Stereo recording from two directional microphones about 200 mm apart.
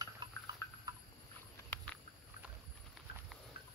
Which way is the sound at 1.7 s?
5° left (ahead or behind).